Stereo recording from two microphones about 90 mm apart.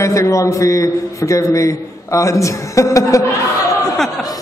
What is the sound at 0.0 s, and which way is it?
A man's voice, 35° left (ahead or behind).